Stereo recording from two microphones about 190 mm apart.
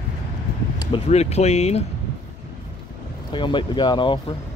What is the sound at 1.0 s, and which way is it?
Speech, 35° left (ahead or behind).